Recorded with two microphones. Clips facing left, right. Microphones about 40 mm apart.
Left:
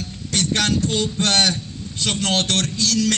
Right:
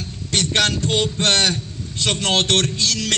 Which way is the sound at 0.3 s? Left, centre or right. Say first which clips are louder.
Right 1 dB; right.